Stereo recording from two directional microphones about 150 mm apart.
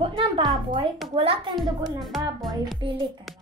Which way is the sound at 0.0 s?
35° right (ahead or behind).